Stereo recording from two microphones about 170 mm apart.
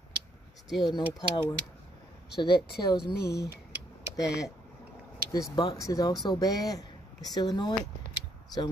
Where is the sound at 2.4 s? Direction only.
25° left (ahead or behind).